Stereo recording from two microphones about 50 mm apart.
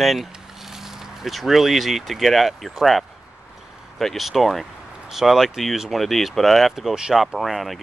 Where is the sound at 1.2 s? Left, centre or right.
Centre.